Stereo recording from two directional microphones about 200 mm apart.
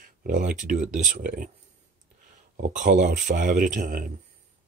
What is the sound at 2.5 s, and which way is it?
Speech, 40° right (ahead or behind).